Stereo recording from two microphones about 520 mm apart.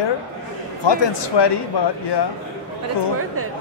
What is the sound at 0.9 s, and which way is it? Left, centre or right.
Speech, left.